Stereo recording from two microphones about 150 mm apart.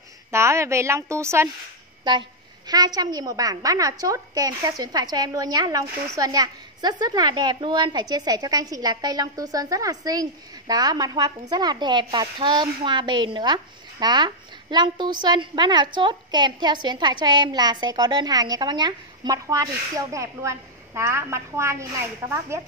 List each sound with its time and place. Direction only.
0.3 s speech: 20° right (ahead or behind)
2.0 s speech: 30° right (ahead or behind)